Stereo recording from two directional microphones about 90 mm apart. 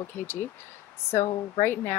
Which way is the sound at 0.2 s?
25° left (ahead or behind).